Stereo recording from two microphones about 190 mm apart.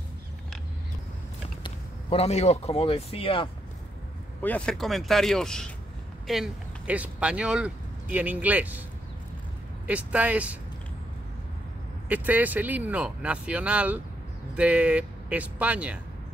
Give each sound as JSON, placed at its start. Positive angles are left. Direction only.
{"t": 1.6, "sound": "speech", "side_deg": 30}
{"t": 4.4, "sound": "speech", "side_deg": 5}
{"t": 9.8, "sound": "speech", "side_deg": -10}
{"t": 12.1, "sound": "speech", "side_deg": -10}